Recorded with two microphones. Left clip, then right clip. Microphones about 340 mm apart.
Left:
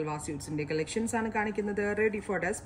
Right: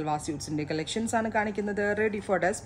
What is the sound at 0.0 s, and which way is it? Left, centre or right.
Speech, right.